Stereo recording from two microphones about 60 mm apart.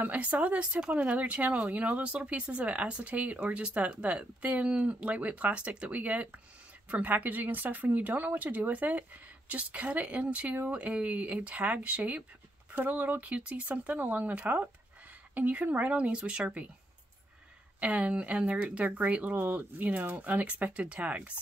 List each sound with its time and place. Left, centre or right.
0.0 s speech: right
17.7 s speech: right